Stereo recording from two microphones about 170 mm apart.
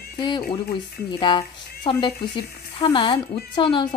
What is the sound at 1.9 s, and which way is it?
A woman's voice, 30° left (ahead or behind).